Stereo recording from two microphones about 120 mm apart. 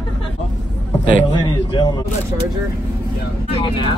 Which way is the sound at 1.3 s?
35° left (ahead or behind).